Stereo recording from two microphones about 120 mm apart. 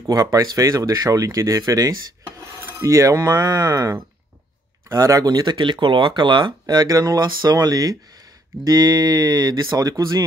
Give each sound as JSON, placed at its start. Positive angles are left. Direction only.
{"t": 0.0, "sound": "speech", "side_deg": -30}